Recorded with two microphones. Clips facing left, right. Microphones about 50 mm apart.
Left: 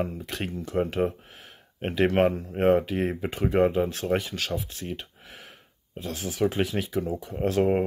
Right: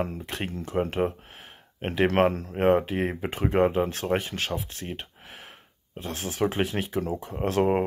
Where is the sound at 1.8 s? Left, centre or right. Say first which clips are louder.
Even; right.